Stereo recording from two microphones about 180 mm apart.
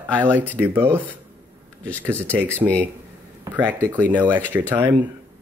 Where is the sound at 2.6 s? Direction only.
15° right (ahead or behind).